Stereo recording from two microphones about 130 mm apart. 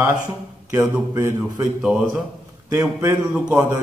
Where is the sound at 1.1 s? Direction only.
20° right (ahead or behind).